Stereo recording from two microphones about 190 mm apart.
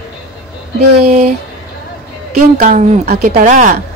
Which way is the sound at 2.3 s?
45° right (ahead or behind).